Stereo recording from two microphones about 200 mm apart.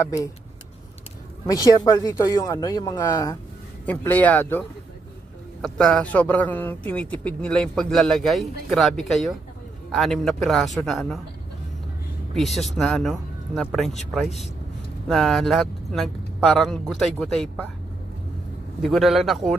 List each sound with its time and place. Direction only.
0.0 s speech: 15° left (ahead or behind)
1.4 s speech: 20° left (ahead or behind)
3.8 s a man's voice: 10° left (ahead or behind)
12.4 s a man's voice: centre (ahead or behind)
15.0 s a man's voice: centre (ahead or behind)
18.8 s a man's voice: centre (ahead or behind)